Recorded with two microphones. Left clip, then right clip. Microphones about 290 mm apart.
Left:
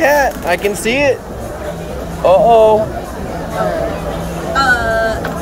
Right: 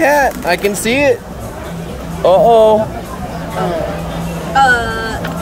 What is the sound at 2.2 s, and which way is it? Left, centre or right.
Speech, right.